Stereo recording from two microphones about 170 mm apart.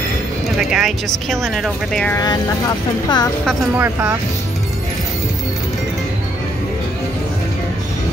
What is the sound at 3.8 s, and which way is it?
Speech, 15° right (ahead or behind).